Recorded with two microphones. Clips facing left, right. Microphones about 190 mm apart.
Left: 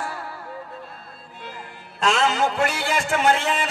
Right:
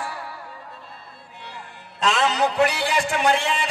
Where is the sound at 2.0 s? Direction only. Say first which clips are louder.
Left 1 dB; 45° left (ahead or behind).